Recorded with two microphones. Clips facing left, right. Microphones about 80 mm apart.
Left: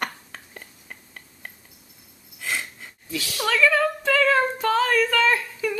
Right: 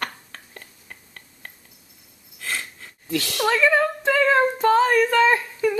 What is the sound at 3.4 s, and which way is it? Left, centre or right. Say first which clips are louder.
Speech: right 1 dB; right.